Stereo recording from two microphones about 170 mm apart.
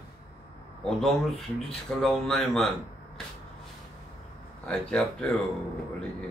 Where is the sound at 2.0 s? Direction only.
Centre (ahead or behind).